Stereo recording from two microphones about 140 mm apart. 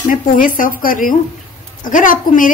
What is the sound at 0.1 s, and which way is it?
Speech, 80° left.